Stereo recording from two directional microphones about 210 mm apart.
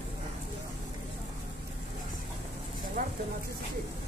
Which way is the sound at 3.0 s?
35° right (ahead or behind).